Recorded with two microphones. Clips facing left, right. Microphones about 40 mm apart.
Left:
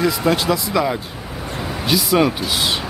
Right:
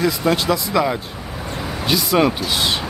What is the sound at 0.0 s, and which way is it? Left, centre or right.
Speech, centre.